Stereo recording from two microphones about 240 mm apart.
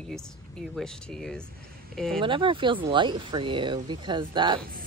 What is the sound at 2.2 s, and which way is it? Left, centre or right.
Speech, right.